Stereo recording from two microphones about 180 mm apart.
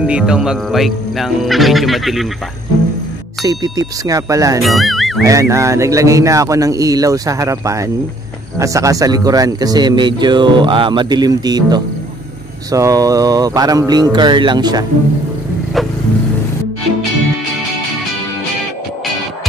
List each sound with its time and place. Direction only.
0.0 s speech: 5° right (ahead or behind)
3.4 s speech: 20° right (ahead or behind)
4.6 s speech: centre (ahead or behind)
5.2 s a man's voice: 15° right (ahead or behind)